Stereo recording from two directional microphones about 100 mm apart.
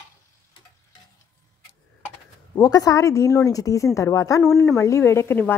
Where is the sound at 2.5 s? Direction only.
40° left (ahead or behind).